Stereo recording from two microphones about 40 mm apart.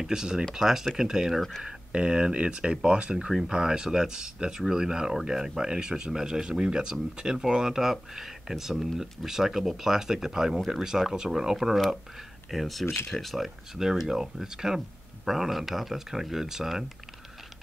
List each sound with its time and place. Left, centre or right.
0.0 s speech: centre
3.3 s speech: centre
12.8 s speech: left
13.1 s speech: centre
13.7 s speech: centre